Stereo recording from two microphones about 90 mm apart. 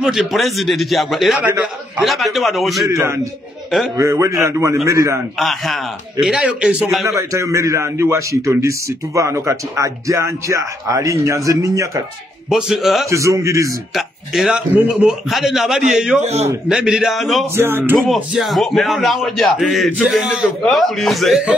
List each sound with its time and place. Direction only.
0.0 s a man's voice: centre (ahead or behind)
2.9 s a man's voice: 30° right (ahead or behind)
5.4 s a man's voice: centre (ahead or behind)
7.1 s a man's voice: 35° right (ahead or behind)
12.4 s a man's voice: 5° right (ahead or behind)
13.1 s a man's voice: 35° right (ahead or behind)
13.9 s a man's voice: 5° right (ahead or behind)
17.6 s speech: 25° right (ahead or behind)
17.9 s a man's voice: 5° left (ahead or behind)
20.2 s a man's voice: 10° right (ahead or behind)
20.6 s a man's voice: centre (ahead or behind)